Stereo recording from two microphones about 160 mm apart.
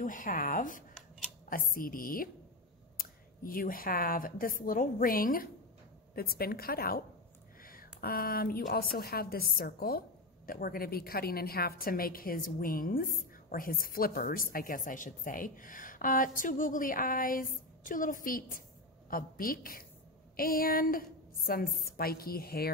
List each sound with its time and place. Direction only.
0.0 s a woman's voice: 55° left (ahead or behind)